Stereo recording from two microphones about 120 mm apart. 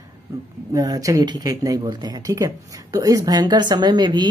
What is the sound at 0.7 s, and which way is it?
A woman's voice, 30° right (ahead or behind).